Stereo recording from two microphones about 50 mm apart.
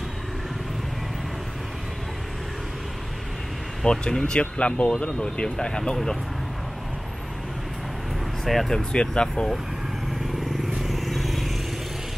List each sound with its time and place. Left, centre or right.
3.8 s speech: centre
4.4 s speech: left
8.5 s speech: centre
10.8 s vehicle: centre